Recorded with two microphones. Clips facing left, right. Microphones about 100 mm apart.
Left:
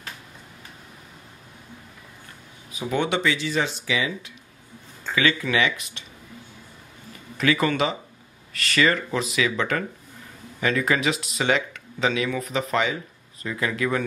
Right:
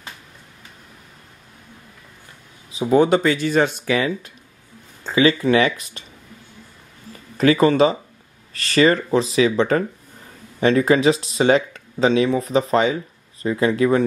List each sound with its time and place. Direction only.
2.8 s speech: 35° right (ahead or behind); by 4.3 s 50° right (ahead or behind)
5.0 s speech: 35° right (ahead or behind)
7.3 s speech: 35° right (ahead or behind)